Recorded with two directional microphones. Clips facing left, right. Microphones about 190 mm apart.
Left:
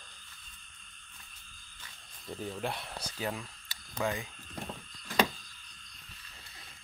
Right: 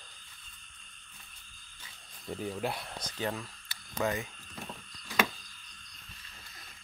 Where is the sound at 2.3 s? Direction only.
10° right (ahead or behind).